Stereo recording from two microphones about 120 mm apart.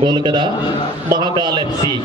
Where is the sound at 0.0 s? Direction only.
40° right (ahead or behind).